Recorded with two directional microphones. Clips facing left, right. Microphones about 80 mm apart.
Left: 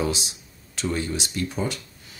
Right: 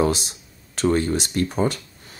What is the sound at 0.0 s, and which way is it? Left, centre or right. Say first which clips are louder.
Speech: right 6 dB; right.